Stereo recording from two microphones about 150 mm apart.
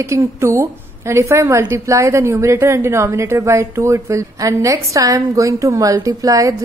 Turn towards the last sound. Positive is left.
turn(degrees=-20)  # may be behind; listen again after turning